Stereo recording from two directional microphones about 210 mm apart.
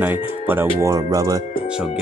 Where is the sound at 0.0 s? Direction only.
10° right (ahead or behind).